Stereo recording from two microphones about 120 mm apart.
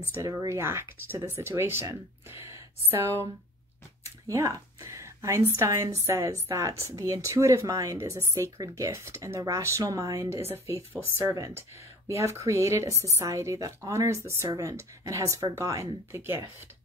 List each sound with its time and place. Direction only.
0.1 s speech: 25° right (ahead or behind)